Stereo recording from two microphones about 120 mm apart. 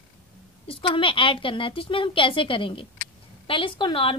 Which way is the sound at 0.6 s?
45° left (ahead or behind).